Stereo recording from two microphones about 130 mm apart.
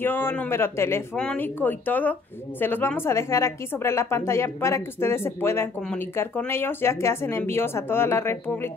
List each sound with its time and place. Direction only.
0.0 s speech: 15° left (ahead or behind)